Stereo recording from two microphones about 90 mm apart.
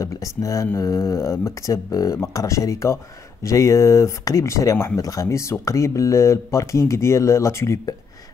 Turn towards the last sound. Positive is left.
turn(degrees=30)  # may be behind; listen again after turning